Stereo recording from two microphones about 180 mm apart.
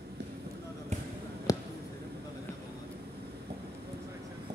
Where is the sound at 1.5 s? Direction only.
20° left (ahead or behind).